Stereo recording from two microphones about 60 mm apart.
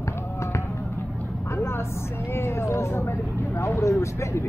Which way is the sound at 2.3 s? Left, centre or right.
Left.